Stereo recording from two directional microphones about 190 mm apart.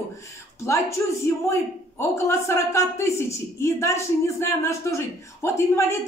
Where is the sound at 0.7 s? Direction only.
15° left (ahead or behind).